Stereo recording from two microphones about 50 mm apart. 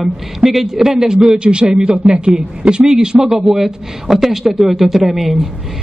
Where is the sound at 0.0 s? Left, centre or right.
Centre.